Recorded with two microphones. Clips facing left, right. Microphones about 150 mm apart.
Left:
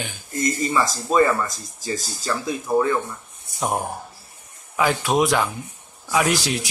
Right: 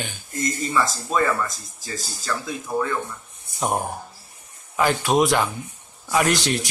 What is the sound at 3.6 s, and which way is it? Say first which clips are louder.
Speech: even; centre (ahead or behind).